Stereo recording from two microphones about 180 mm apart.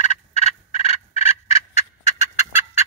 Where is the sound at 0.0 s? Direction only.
40° left (ahead or behind).